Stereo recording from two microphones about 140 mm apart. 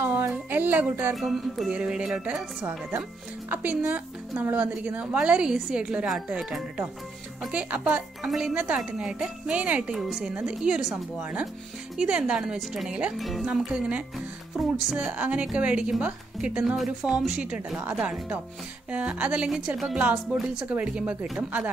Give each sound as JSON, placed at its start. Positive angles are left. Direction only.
{"t": 0.0, "sound": "a sound", "side_deg": -15}
{"t": 0.3, "sound": "speech", "side_deg": -10}
{"t": 1.1, "sound": "a woman's voice", "side_deg": 0}